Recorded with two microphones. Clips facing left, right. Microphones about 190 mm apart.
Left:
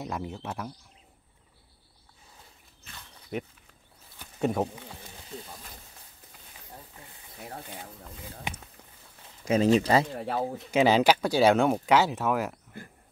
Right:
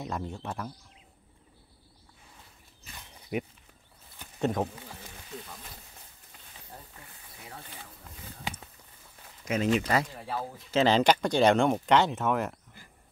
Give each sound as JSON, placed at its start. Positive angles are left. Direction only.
{"t": 0.0, "sound": "speech", "side_deg": 5}
{"t": 2.8, "sound": "a sound", "side_deg": -15}
{"t": 4.2, "sound": "a sound", "side_deg": 5}
{"t": 9.4, "sound": "speech", "side_deg": 30}
{"t": 10.1, "sound": "speech", "side_deg": 70}
{"t": 10.7, "sound": "speech", "side_deg": 10}